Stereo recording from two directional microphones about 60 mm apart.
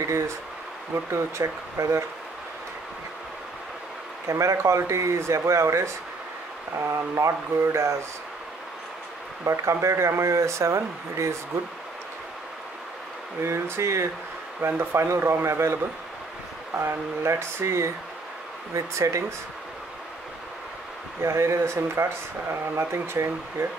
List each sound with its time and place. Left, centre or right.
0.9 s speech: right
4.3 s speech: right
9.4 s speech: right
13.4 s speech: right
14.6 s speech: right
21.2 s speech: right